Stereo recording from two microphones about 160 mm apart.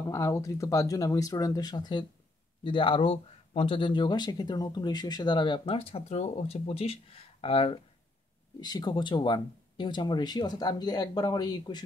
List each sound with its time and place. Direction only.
0.1 s speech: 20° left (ahead or behind); by 7.8 s 35° left (ahead or behind)
8.5 s speech: 25° left (ahead or behind)